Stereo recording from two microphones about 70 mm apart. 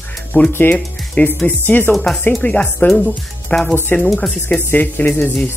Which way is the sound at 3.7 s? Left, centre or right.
Left.